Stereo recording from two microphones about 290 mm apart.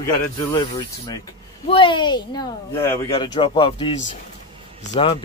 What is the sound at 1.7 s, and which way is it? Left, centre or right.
Speech, centre.